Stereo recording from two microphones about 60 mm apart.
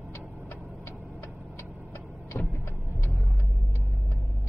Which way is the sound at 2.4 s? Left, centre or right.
Left.